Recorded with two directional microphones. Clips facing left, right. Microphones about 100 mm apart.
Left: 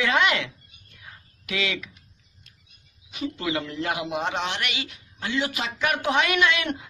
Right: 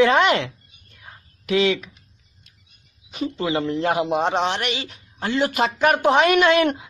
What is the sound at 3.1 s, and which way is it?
Speech, 35° right (ahead or behind).